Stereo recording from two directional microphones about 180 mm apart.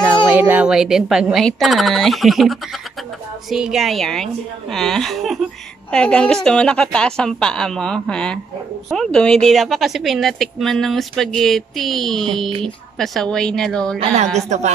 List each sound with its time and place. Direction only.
0.3 s a woman's voice: 10° right (ahead or behind)
13.9 s a woman's voice: 35° right (ahead or behind)